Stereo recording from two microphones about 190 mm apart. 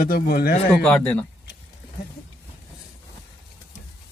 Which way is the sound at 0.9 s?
5° left (ahead or behind).